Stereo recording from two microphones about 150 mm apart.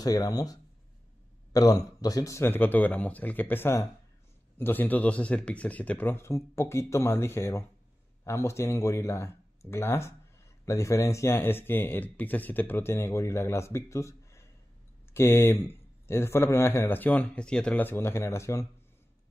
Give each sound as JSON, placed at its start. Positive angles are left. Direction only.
{"t": 0.0, "sound": "speech", "side_deg": 25}